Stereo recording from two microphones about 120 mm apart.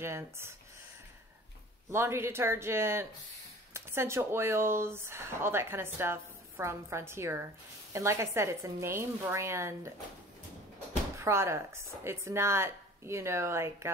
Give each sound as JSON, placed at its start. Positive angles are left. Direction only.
{"t": 0.0, "sound": "speech", "side_deg": -20}
{"t": 1.9, "sound": "speech", "side_deg": -20}
{"t": 11.1, "sound": "speech", "side_deg": -20}